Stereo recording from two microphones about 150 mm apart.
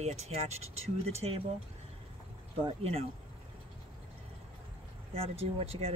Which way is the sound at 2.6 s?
40° right (ahead or behind).